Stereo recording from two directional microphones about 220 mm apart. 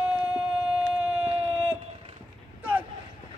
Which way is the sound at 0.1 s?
5° right (ahead or behind).